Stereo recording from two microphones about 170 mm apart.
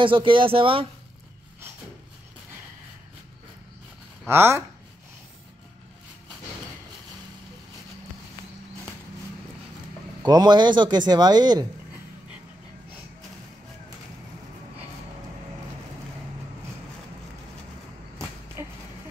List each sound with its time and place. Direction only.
0.0 s speech: 30° right (ahead or behind)
4.3 s speech: 15° right (ahead or behind)
10.2 s speech: 25° right (ahead or behind)